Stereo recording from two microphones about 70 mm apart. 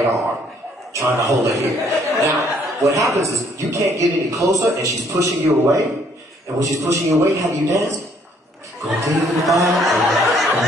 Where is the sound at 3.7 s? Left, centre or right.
Right.